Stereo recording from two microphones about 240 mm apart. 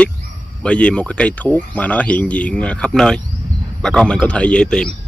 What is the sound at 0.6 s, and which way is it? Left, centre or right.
Speech, centre.